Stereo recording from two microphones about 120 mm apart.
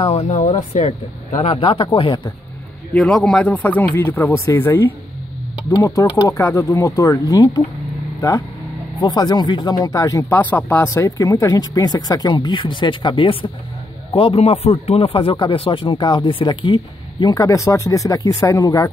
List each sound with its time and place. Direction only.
0.1 s speech: 65° left (ahead or behind)
0.7 s speech: 90° left
1.3 s speech: 55° left (ahead or behind); by 2.3 s 40° left (ahead or behind)
2.9 s speech: 5° left (ahead or behind); by 7.6 s 30° left (ahead or behind)
9.0 s speech: 35° left (ahead or behind)
10.4 s speech: 15° left (ahead or behind); by 17.3 s 40° left (ahead or behind)
17.3 s speech: 30° left (ahead or behind)